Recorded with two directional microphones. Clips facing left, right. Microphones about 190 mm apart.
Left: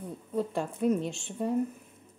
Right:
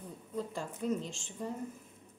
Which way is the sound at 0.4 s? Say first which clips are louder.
Left 8 dB; 65° left (ahead or behind).